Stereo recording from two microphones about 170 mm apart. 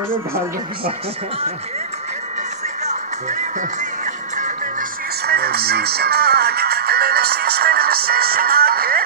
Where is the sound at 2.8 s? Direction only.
45° right (ahead or behind).